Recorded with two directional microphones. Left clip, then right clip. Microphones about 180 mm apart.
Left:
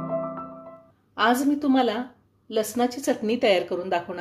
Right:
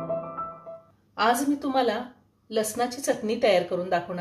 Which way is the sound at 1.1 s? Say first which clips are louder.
Left 2 dB; 50° left (ahead or behind).